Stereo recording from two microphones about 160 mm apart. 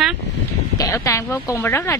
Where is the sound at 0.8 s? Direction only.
20° left (ahead or behind).